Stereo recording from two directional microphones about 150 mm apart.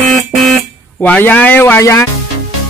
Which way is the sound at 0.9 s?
10° left (ahead or behind).